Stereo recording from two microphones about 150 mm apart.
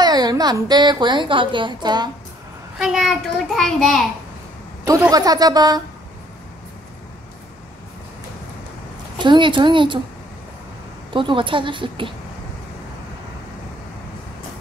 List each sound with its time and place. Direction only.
0.0 s a woman's voice: 25° right (ahead or behind)
2.8 s a child's voice: 5° right (ahead or behind)
5.1 s a woman's voice: 25° right (ahead or behind)
9.2 s a woman's voice: 30° right (ahead or behind)
11.1 s a woman's voice: 35° right (ahead or behind)